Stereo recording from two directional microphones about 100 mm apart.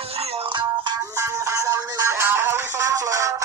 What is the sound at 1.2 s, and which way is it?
Music, 30° right (ahead or behind).